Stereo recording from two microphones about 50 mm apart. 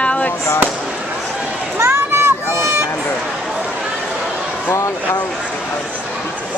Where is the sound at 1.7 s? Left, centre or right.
Right.